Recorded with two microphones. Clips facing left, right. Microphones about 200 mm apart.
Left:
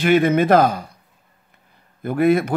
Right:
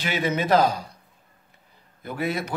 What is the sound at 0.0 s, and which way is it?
Speech, 55° left (ahead or behind).